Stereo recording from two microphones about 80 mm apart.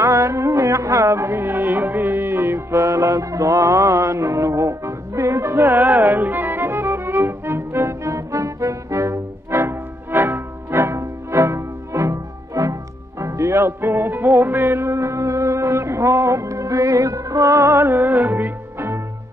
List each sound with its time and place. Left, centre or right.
0.0 s music: right